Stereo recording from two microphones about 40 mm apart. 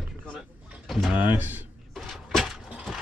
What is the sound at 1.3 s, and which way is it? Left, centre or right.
Speech, right.